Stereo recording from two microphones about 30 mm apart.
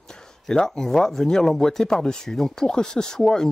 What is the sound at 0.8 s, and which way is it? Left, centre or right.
Speech, centre.